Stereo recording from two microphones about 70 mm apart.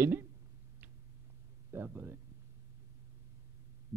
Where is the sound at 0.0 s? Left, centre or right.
Right.